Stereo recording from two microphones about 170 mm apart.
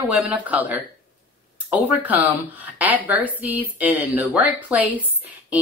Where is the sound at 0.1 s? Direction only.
10° right (ahead or behind).